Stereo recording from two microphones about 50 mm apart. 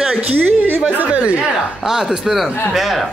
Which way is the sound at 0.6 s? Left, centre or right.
Right.